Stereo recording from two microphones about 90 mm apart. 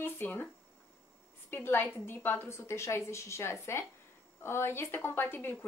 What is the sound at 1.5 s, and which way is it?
A woman's voice, 25° left (ahead or behind).